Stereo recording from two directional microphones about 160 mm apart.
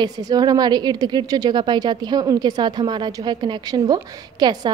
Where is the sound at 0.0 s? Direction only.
25° right (ahead or behind).